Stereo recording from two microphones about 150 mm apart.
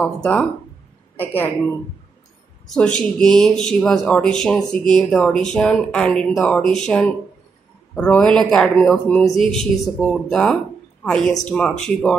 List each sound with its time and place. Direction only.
0.0 s a woman's voice: 5° left (ahead or behind)
2.7 s speech: 5° left (ahead or behind)